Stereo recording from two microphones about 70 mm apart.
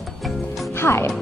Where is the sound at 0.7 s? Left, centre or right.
Left.